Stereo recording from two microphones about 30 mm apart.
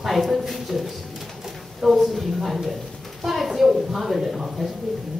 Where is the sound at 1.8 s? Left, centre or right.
Centre.